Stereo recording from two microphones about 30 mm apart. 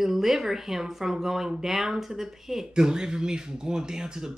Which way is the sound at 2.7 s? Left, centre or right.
Right.